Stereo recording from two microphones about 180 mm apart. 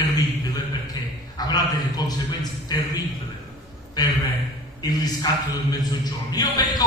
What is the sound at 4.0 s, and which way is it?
A man's voice, 20° left (ahead or behind).